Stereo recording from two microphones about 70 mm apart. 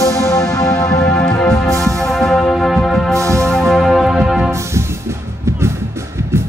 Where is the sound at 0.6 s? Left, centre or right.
Left.